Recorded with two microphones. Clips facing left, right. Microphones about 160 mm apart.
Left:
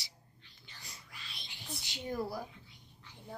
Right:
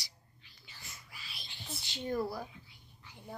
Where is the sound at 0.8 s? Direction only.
35° left (ahead or behind).